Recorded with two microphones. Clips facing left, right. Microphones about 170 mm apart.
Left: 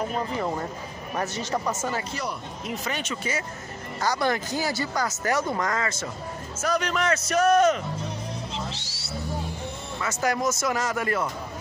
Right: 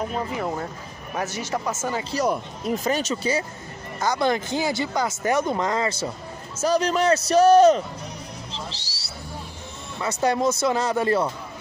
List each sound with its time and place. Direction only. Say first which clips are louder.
0.3 s speech: even; 5° right (ahead or behind)
2.1 s speech: right 8 dB; 45° right (ahead or behind)
4.0 s speech: right 3 dB; 20° right (ahead or behind)
8.5 s music: left 2 dB; 35° right (ahead or behind)
9.9 s speech: right 4 dB; 25° right (ahead or behind)